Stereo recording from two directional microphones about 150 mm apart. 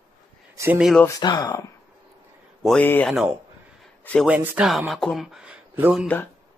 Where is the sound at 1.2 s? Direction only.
25° left (ahead or behind).